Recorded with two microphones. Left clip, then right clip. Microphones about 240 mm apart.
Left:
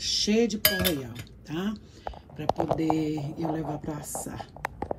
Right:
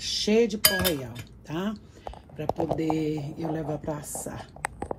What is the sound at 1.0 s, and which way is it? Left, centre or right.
Speech, centre.